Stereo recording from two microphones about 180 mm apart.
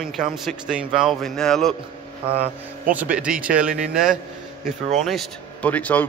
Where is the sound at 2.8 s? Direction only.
10° right (ahead or behind).